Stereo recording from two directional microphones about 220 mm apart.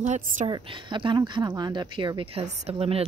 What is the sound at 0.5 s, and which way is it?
Speech, 20° right (ahead or behind).